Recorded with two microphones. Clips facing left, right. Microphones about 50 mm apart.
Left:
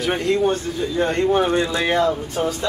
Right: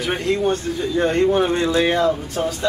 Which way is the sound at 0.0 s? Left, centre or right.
Centre.